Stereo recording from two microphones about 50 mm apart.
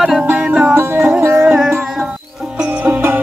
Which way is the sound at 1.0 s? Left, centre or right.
Right.